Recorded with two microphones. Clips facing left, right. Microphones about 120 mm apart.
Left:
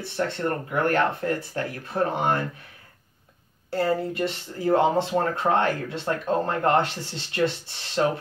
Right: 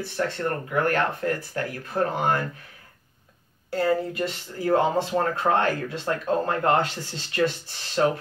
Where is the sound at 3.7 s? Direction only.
30° left (ahead or behind).